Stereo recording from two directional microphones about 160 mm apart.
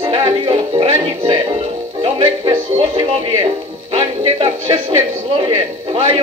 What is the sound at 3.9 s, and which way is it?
Music, 35° right (ahead or behind).